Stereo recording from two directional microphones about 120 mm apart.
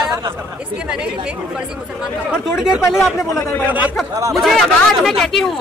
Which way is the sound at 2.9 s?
Centre (ahead or behind).